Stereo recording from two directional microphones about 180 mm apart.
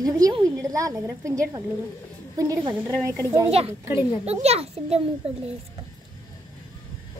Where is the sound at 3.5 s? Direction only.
35° right (ahead or behind).